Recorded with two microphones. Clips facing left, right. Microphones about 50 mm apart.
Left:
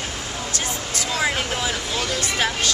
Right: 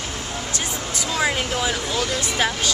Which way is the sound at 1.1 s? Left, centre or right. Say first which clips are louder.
Right 1 dB; centre.